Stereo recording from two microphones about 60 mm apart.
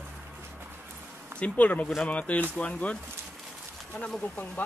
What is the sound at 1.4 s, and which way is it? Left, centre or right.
Speech, left.